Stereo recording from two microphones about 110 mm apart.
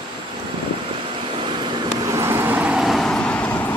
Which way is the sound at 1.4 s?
45° right (ahead or behind).